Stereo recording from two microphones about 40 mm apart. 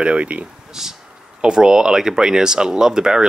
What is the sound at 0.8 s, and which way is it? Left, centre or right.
Speech, centre.